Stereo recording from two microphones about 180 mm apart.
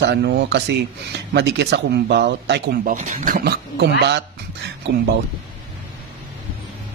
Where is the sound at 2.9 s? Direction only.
45° right (ahead or behind); by 3.9 s 60° right (ahead or behind).